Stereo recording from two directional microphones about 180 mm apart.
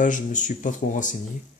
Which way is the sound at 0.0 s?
45° left (ahead or behind).